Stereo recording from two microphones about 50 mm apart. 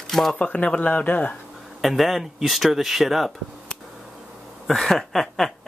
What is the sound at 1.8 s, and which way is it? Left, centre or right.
Speech, centre.